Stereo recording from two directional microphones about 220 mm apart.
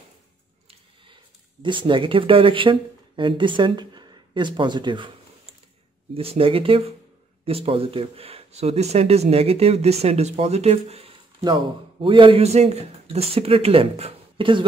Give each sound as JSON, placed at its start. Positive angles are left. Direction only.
{"t": 1.6, "sound": "speech", "side_deg": -20}
{"t": 6.1, "sound": "speech", "side_deg": -25}